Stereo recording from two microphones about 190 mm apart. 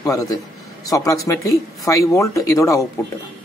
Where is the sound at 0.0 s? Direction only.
15° left (ahead or behind).